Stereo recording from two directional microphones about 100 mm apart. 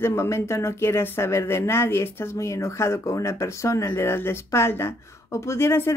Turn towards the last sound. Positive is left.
turn(degrees=25)  # may be behind; listen again after turning